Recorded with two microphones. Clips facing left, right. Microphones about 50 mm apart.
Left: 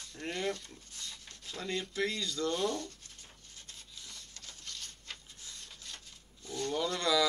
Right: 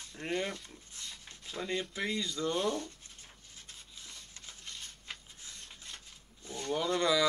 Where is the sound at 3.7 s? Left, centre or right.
Centre.